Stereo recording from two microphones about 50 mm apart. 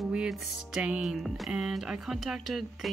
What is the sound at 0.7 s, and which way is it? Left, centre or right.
Speech, centre.